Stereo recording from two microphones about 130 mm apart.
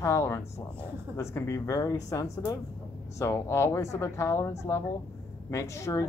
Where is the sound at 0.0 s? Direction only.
20° left (ahead or behind).